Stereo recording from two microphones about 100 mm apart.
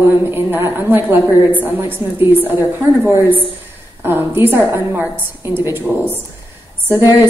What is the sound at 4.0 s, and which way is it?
A woman's voice, 20° right (ahead or behind).